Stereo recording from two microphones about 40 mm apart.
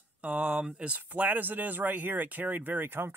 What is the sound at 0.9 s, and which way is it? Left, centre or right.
Speech, right.